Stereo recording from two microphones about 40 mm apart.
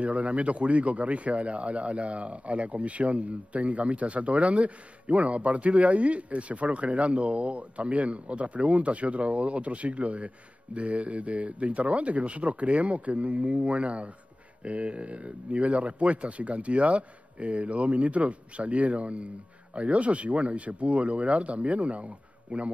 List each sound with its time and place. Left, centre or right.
0.0 s a man's voice: right